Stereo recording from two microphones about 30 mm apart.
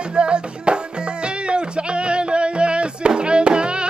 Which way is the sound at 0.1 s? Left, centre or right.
Right.